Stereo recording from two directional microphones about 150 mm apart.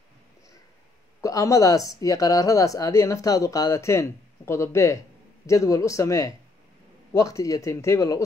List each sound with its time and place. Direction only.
1.2 s speech: 20° left (ahead or behind)